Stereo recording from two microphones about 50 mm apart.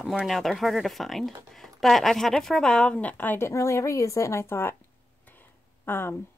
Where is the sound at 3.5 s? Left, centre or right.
Left.